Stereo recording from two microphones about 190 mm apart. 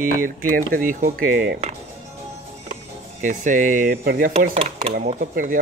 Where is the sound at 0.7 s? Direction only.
50° right (ahead or behind).